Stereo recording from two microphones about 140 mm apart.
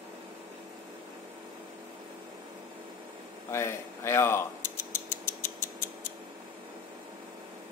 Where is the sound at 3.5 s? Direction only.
20° left (ahead or behind).